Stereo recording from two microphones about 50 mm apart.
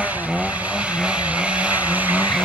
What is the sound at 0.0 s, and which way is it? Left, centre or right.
Vehicle, right.